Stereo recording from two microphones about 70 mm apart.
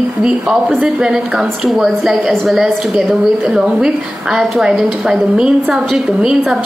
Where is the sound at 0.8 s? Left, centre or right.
Centre.